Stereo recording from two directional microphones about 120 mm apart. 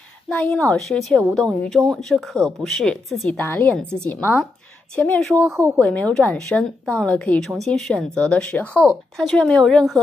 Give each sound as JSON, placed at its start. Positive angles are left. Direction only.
{"t": 0.3, "sound": "speech", "side_deg": 15}
{"t": 0.7, "sound": "speech", "side_deg": 0}
{"t": 3.3, "sound": "speech", "side_deg": 15}
{"t": 5.4, "sound": "speech", "side_deg": -25}
{"t": 5.9, "sound": "speech", "side_deg": 10}